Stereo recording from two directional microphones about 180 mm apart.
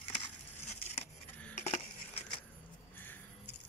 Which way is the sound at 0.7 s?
35° left (ahead or behind).